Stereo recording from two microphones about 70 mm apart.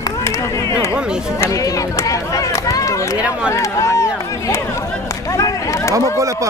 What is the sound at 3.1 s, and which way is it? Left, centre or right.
Run, centre.